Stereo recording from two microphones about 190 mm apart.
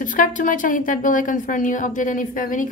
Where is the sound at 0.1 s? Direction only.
45° left (ahead or behind).